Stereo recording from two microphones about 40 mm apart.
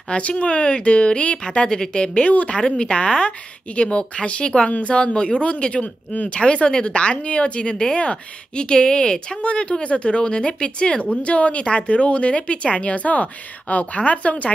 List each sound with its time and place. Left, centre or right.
0.1 s a woman's voice: left